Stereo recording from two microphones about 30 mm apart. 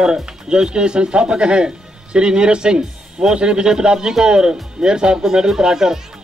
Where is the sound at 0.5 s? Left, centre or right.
Right.